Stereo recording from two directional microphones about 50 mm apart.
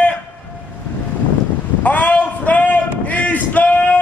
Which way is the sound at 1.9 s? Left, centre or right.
Left.